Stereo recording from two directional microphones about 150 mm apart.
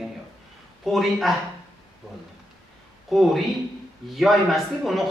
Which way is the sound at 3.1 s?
Centre (ahead or behind).